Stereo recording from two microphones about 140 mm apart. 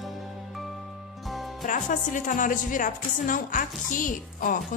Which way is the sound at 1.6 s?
65° left (ahead or behind).